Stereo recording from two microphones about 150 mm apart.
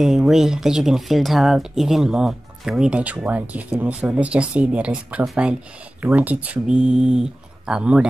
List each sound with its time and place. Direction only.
0.0 s speech: centre (ahead or behind)